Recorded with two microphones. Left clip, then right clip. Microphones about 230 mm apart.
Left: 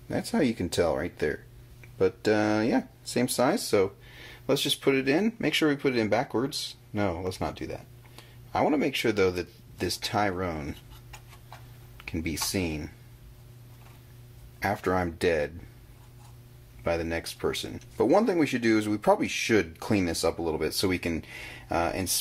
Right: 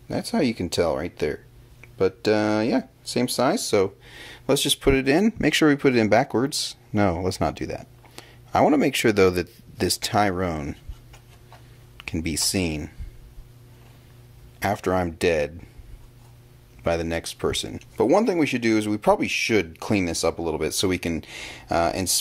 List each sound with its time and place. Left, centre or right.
0.1 s speech: centre; by 10.8 s right
12.0 s speech: right
14.6 s speech: right
16.8 s speech: right